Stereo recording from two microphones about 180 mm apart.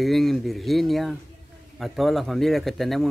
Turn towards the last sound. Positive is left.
turn(degrees=0)  # may be behind; listen again after turning